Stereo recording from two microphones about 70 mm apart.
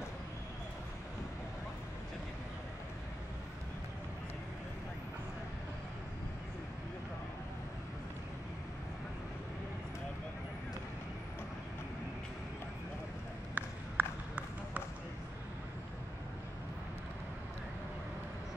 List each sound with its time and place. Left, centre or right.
13.6 s run: right